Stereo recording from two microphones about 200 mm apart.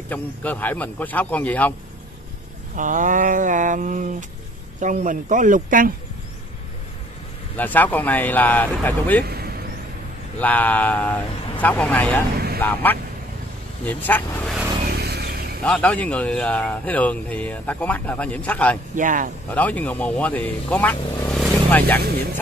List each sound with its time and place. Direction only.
0.1 s speech: 10° left (ahead or behind)
2.7 s a sound: 40° right (ahead or behind)
7.5 s speech: 10° left (ahead or behind)
9.2 s vehicle: 50° right (ahead or behind)
10.4 s speech: 10° left (ahead or behind)
14.9 s a sound: 55° right (ahead or behind)
15.6 s speech: 5° left (ahead or behind)
18.9 s a sound: 40° right (ahead or behind)
19.5 s speech: 5° left (ahead or behind)